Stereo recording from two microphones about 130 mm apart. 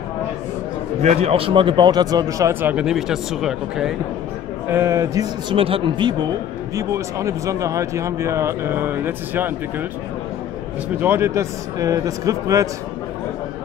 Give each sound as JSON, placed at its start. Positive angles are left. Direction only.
{"t": 1.0, "sound": "a man's voice", "side_deg": -55}
{"t": 2.7, "sound": "speech", "side_deg": -5}
{"t": 4.6, "sound": "speech", "side_deg": -20}
{"t": 5.6, "sound": "a man's voice", "side_deg": -45}
{"t": 6.7, "sound": "speech", "side_deg": -25}
{"t": 11.0, "sound": "speech", "side_deg": -20}